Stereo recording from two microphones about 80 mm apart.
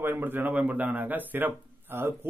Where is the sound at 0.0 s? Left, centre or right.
Right.